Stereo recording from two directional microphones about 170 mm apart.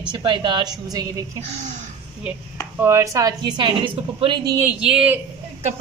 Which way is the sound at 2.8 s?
15° right (ahead or behind).